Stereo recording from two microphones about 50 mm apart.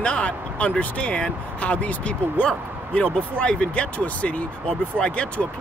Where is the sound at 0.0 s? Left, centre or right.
Left.